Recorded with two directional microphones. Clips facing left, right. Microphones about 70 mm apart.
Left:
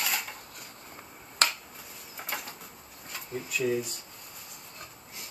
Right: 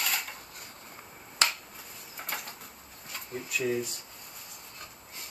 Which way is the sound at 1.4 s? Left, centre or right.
Left.